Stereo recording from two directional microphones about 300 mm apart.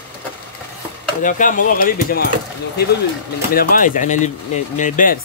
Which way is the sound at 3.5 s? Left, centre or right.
Left.